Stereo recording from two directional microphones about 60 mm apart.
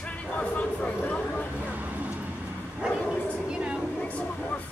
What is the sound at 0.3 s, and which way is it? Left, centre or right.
Vehicle, left.